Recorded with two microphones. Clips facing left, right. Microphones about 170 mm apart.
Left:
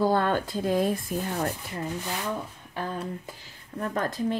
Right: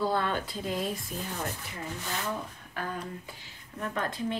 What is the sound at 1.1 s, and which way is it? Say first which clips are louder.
Sanding: left 7 dB; 50° left (ahead or behind).